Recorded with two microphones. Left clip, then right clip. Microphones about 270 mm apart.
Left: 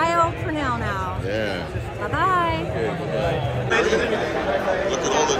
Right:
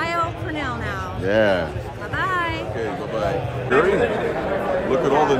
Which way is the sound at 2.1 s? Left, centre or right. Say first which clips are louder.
Left 2 dB; centre.